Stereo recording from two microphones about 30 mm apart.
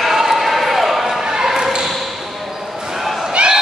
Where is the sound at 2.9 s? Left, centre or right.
Centre.